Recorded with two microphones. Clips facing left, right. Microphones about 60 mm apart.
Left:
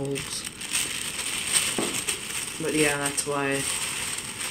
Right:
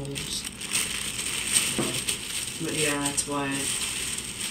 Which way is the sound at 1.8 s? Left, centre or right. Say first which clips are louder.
Even; centre.